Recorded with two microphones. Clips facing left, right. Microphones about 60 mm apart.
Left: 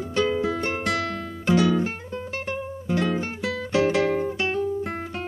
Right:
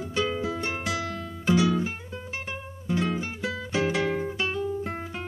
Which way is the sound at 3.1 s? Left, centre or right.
Left.